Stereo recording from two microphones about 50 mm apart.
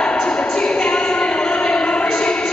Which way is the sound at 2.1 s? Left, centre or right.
Left.